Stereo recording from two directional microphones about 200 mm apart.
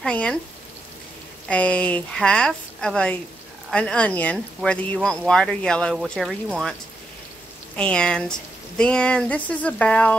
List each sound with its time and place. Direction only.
0.0 s speech: 5° left (ahead or behind)
1.5 s speech: 5° left (ahead or behind)
7.7 s speech: 5° left (ahead or behind)